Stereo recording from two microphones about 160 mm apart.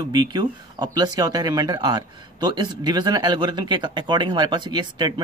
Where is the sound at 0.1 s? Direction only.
25° right (ahead or behind).